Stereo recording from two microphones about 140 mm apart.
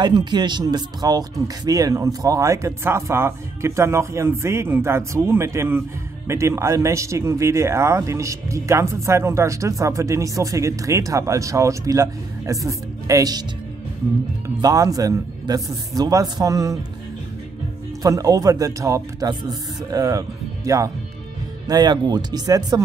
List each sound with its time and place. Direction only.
0.0 s speech: 30° right (ahead or behind)
14.6 s speech: 25° right (ahead or behind)
18.0 s speech: 25° right (ahead or behind)